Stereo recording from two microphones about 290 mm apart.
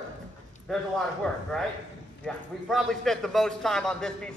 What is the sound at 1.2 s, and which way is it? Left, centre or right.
A man's voice, centre.